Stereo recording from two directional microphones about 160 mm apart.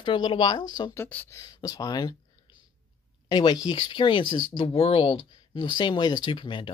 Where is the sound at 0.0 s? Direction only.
30° left (ahead or behind).